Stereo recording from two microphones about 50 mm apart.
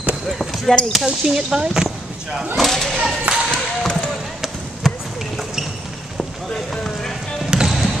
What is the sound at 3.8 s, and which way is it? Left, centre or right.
Basketball bounce, centre.